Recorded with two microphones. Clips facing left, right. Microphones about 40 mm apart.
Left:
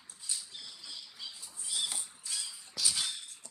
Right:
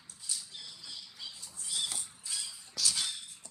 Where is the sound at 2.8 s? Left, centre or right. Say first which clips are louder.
Right 1 dB; left.